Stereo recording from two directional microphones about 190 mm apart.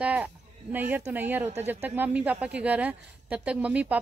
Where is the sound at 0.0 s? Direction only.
5° right (ahead or behind).